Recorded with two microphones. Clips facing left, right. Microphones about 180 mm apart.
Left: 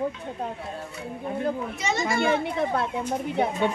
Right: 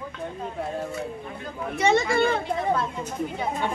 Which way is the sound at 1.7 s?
60° right (ahead or behind).